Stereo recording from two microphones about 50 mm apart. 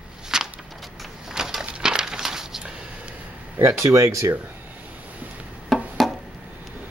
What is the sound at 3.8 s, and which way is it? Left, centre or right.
Speech, right.